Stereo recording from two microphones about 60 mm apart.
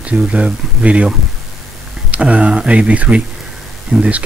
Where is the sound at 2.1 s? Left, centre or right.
Right.